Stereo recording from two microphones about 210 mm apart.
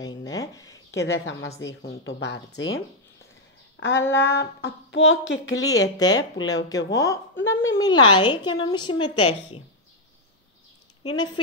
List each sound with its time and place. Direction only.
0.0 s a sound: 20° left (ahead or behind)
1.0 s a woman's voice: 70° left (ahead or behind)
1.6 s speech: 60° left (ahead or behind)
3.8 s speech: 10° left (ahead or behind)
4.4 s speech: 60° left (ahead or behind)
5.6 s speech: 15° left (ahead or behind)
7.3 s speech: 65° left (ahead or behind)
7.7 s a woman's voice: 20° left (ahead or behind)